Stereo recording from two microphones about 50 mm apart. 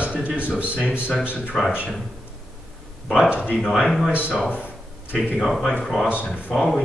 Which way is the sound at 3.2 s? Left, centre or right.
Right.